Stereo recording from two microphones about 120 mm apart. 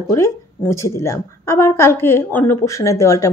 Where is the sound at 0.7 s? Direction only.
25° left (ahead or behind).